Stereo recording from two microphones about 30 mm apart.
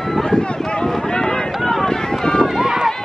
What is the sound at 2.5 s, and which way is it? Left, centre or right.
Run, centre.